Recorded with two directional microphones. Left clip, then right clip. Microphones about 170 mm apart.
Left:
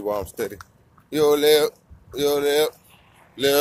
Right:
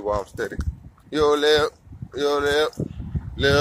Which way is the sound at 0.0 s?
25° left (ahead or behind).